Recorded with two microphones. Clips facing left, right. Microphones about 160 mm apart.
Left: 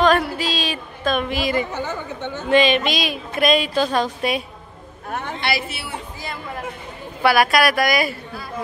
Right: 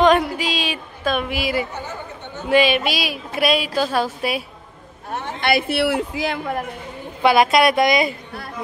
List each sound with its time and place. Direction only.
0.0 s a sound: 15° right (ahead or behind)
1.7 s speech: 90° left
2.5 s a woman's voice: 10° right (ahead or behind)
5.4 s a man's voice: 55° right (ahead or behind)
7.2 s a woman's voice: 20° right (ahead or behind)